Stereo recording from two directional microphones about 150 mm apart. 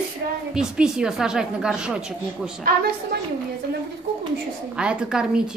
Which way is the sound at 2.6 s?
90° right.